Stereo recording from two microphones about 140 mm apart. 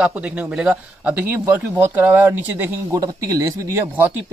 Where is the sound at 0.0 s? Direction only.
10° right (ahead or behind).